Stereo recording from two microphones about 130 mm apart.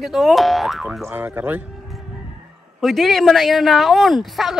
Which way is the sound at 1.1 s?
20° right (ahead or behind).